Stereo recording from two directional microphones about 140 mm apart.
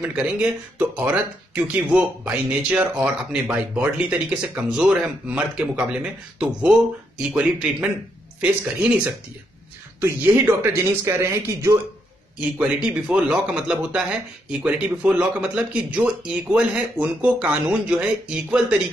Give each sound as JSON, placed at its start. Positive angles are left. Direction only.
{"t": 0.0, "sound": "speech", "side_deg": -10}
{"t": 9.9, "sound": "speech", "side_deg": -15}
{"t": 12.4, "sound": "speech", "side_deg": -10}